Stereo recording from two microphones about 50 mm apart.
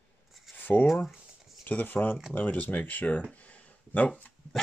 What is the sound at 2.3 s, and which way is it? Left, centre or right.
Speech, left.